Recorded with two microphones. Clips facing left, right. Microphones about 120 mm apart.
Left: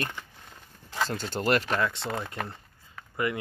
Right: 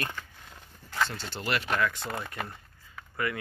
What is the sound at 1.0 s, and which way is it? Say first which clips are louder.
Speech: left 3 dB; 45° left (ahead or behind).